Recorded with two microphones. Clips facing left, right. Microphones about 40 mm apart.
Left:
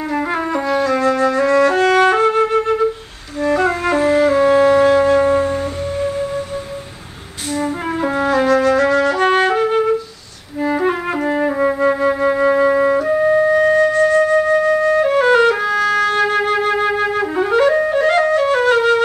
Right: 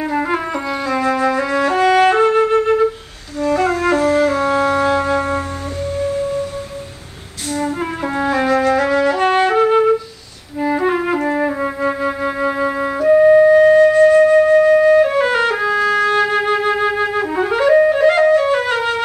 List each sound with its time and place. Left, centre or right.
0.1 s music: centre
3.3 s music: centre
5.9 s music: centre
7.5 s music: centre
10.6 s flute: centre
15.0 s music: centre